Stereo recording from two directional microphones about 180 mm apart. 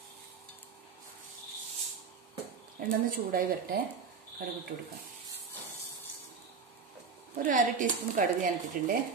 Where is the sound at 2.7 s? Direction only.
50° right (ahead or behind).